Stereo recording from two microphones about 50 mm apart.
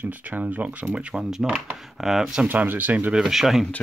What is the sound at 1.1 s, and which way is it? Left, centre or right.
Speech, centre.